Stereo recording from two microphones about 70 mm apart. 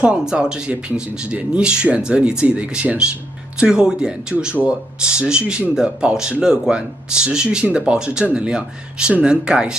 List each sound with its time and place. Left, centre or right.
0.0 s speech: centre